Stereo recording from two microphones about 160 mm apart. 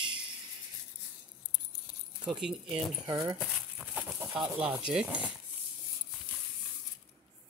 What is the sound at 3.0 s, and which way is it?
Speech, 25° right (ahead or behind).